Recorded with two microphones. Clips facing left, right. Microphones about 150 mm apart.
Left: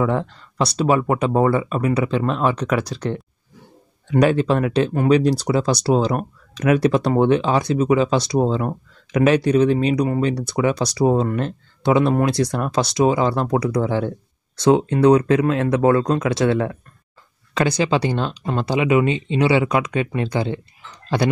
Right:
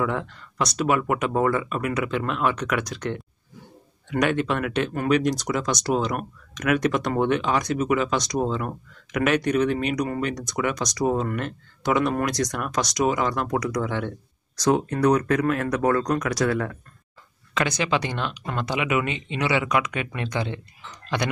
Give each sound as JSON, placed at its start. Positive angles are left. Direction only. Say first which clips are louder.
{"t": 0.0, "sound": "speech", "louder": "left 5 dB", "side_deg": 30}